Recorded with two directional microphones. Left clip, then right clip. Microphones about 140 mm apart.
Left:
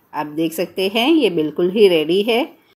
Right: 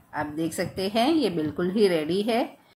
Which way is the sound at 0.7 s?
35° right (ahead or behind).